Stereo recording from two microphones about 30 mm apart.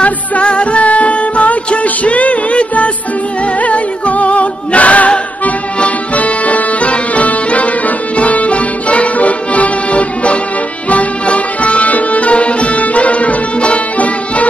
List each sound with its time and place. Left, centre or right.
0.0 s music: left